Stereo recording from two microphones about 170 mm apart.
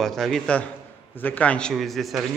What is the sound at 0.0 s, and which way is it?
A man's voice, centre (ahead or behind).